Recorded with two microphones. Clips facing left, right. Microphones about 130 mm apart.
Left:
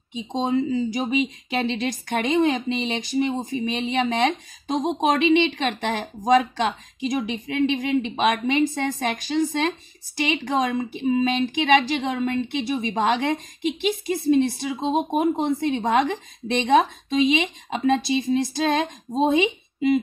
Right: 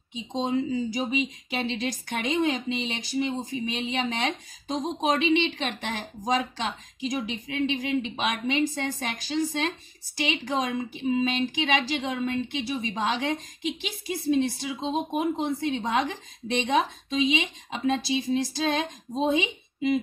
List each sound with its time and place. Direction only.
0.1 s speech: 60° left (ahead or behind)
14.7 s speech: 40° left (ahead or behind)